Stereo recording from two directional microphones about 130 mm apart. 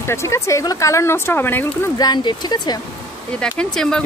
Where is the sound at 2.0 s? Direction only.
35° left (ahead or behind).